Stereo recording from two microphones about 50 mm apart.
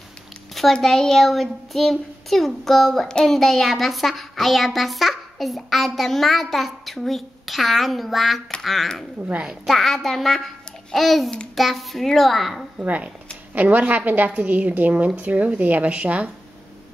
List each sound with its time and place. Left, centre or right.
0.8 s a child's voice: centre
12.8 s a woman's voice: right